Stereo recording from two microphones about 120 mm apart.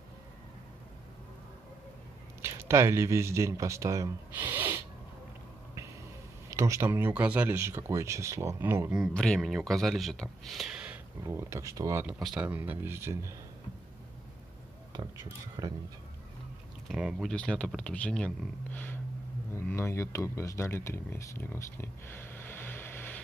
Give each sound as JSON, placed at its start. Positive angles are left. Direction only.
{"t": 2.4, "sound": "speech", "side_deg": -25}
{"t": 4.3, "sound": "owl", "side_deg": -15}
{"t": 6.5, "sound": "speech", "side_deg": -25}
{"t": 9.1, "sound": "speech", "side_deg": 10}
{"t": 9.4, "sound": "speech", "side_deg": -5}
{"t": 11.2, "sound": "speech", "side_deg": -25}
{"t": 12.1, "sound": "speech", "side_deg": -5}
{"t": 15.6, "sound": "speech", "side_deg": -30}
{"t": 16.8, "sound": "speech", "side_deg": -5}
{"t": 17.3, "sound": "speech", "side_deg": 10}